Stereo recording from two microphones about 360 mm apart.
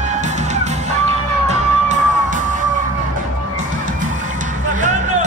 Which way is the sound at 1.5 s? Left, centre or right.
Centre.